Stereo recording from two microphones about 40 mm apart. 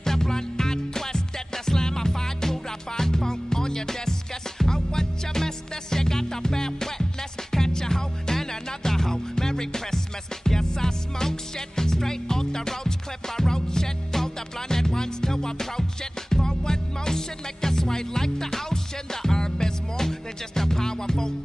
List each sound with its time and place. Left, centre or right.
0.0 s music: centre